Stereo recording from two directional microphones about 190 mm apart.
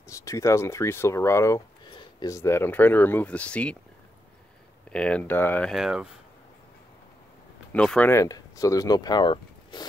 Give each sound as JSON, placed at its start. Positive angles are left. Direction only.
{"t": 0.1, "sound": "speech", "side_deg": 15}
{"t": 4.9, "sound": "speech", "side_deg": 5}
{"t": 7.7, "sound": "speech", "side_deg": 5}